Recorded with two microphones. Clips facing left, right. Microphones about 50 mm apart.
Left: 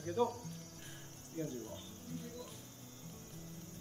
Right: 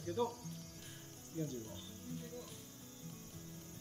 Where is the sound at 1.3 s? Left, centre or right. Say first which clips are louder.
Left 1 dB; left.